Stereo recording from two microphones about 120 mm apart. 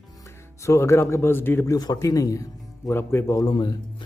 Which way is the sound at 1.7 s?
30° left (ahead or behind).